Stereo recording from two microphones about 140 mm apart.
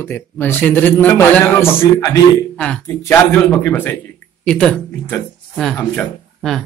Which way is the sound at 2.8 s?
15° left (ahead or behind).